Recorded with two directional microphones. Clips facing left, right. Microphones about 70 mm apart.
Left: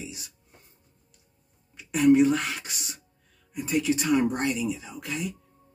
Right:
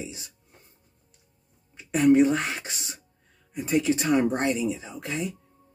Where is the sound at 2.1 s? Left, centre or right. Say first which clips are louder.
Right 1 dB; right.